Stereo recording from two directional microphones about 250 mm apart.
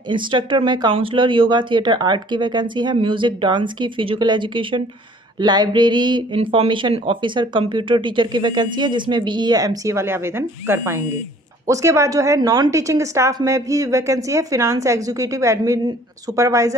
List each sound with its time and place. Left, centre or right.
0.1 s a woman's voice: centre